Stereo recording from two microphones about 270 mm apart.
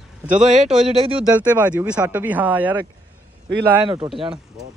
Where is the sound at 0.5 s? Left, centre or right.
Right.